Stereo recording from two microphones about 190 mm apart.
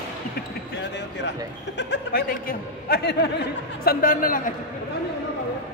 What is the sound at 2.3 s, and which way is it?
A man's voice, 50° left (ahead or behind).